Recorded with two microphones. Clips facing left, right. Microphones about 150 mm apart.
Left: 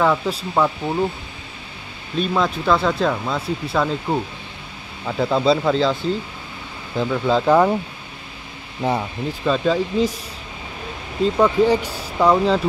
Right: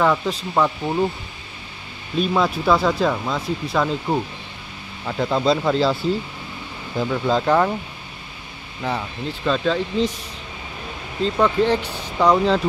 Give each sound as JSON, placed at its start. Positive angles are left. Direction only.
{"t": 0.0, "sound": "speech", "side_deg": 5}
{"t": 2.1, "sound": "speech", "side_deg": -5}
{"t": 7.0, "sound": "speech", "side_deg": 0}
{"t": 8.8, "sound": "speech", "side_deg": 15}
{"t": 11.2, "sound": "speech", "side_deg": 10}